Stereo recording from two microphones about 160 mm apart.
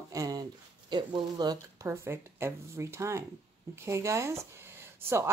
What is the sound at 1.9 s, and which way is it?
Speech, 15° right (ahead or behind).